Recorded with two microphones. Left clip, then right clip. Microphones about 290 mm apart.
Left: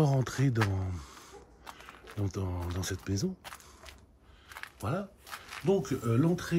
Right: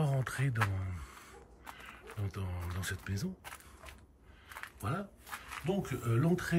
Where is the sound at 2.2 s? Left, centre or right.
Centre.